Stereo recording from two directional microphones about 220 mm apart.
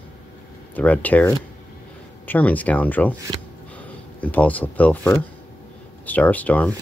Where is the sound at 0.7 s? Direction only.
5° left (ahead or behind).